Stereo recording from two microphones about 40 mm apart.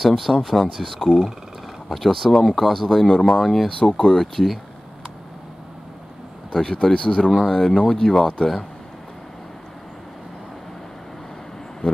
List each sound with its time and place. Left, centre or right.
0.0 s speech: centre
6.5 s speech: centre